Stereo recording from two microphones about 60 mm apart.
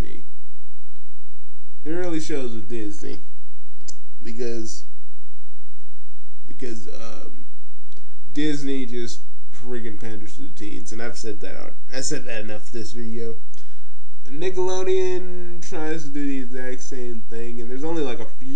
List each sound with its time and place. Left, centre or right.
1.9 s speech: centre
3.8 s clicking: centre
6.5 s a sound: centre
7.9 s speech: centre